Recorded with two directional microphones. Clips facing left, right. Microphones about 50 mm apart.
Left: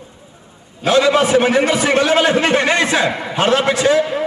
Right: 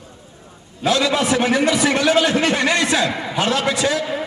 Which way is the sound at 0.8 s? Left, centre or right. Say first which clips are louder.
Left 5 dB; left.